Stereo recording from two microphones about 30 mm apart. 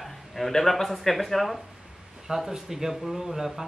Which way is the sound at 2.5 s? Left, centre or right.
Centre.